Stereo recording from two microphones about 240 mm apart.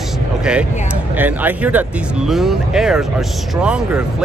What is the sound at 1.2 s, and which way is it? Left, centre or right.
Speech, centre.